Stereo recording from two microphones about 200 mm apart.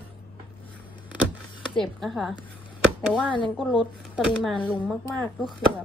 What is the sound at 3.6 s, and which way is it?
Speech, centre (ahead or behind).